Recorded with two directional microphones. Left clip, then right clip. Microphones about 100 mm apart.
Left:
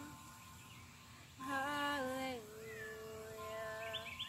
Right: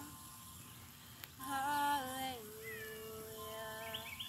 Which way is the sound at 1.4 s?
10° left (ahead or behind).